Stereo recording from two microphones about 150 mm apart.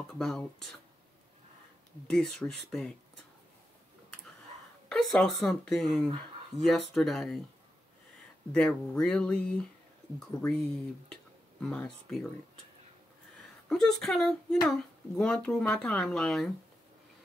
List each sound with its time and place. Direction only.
0.1 s speech: 5° left (ahead or behind)
2.0 s speech: 5° left (ahead or behind)
4.8 s speech: centre (ahead or behind)
8.5 s speech: 5° left (ahead or behind)
11.6 s speech: 5° left (ahead or behind)
13.7 s speech: 5° left (ahead or behind)